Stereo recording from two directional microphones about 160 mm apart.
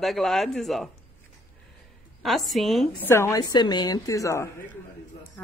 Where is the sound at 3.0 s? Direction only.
15° left (ahead or behind).